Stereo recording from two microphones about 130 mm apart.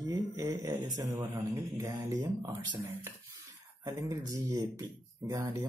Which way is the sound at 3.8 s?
25° right (ahead or behind).